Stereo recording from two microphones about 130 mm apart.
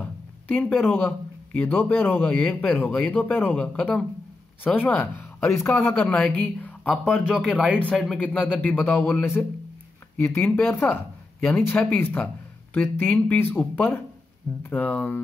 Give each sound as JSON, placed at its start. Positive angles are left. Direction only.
{"t": 0.5, "sound": "a man's voice", "side_deg": 15}
{"t": 7.3, "sound": "speech", "side_deg": -10}
{"t": 7.8, "sound": "a man's voice", "side_deg": 0}